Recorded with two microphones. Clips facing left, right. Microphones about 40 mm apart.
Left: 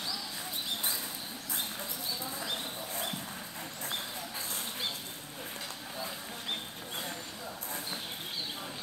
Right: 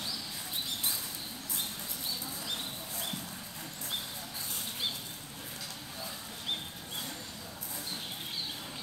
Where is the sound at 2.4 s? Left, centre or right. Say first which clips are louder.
Left 2 dB; centre.